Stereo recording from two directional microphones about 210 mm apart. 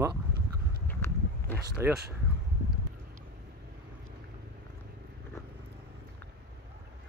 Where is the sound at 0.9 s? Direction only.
10° left (ahead or behind).